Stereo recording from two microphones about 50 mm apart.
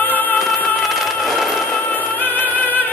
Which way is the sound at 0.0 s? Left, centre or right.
Left.